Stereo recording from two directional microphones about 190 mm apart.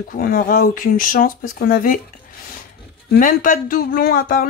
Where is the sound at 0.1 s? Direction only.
50° left (ahead or behind).